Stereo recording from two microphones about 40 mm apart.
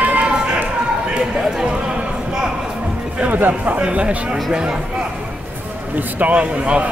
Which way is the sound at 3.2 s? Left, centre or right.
Right.